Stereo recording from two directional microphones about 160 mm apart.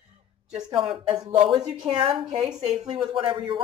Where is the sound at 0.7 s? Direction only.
35° right (ahead or behind).